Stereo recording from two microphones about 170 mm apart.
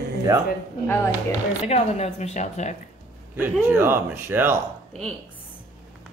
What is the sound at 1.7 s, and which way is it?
Speech, 40° left (ahead or behind).